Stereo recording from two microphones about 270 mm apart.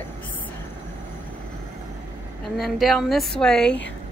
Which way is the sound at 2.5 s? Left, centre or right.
Centre.